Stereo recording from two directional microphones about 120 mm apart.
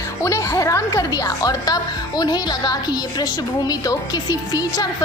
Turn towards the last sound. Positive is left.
turn(degrees=35)  # may be behind; listen again after turning